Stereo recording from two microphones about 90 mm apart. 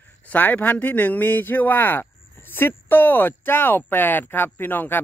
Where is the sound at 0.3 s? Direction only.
20° left (ahead or behind).